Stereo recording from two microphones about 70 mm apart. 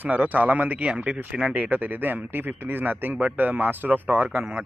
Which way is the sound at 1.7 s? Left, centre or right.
Right.